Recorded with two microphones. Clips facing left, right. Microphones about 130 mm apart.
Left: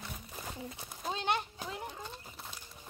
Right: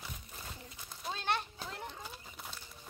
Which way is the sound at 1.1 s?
15° left (ahead or behind).